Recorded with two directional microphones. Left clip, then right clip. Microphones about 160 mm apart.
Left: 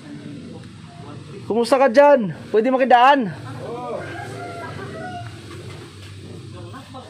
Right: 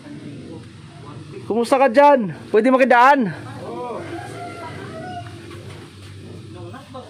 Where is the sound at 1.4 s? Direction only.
Centre (ahead or behind).